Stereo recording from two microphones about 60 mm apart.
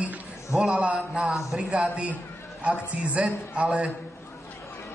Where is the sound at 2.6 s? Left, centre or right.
Centre.